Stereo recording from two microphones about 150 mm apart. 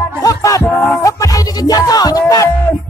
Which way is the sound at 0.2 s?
25° left (ahead or behind).